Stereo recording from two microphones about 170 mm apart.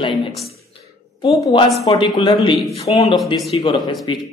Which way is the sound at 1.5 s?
30° left (ahead or behind).